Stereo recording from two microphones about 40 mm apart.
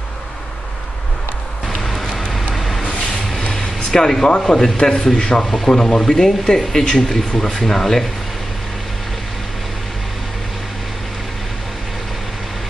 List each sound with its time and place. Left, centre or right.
1.7 s vehicle: centre
3.5 s music: centre
4.3 s speech: left